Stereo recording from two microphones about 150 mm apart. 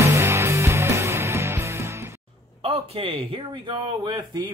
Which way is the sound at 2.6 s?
40° right (ahead or behind).